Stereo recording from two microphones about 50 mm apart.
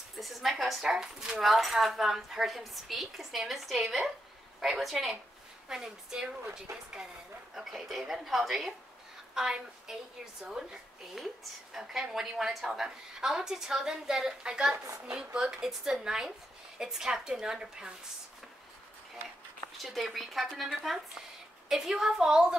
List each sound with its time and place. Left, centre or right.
0.2 s a woman's voice: centre
0.9 s a woman's voice: centre
1.4 s a woman's voice: centre
7.5 s a woman's voice: centre
19.8 s a woman's voice: centre